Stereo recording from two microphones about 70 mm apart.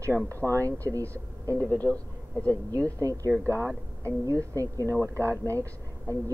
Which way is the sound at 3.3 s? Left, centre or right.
Right.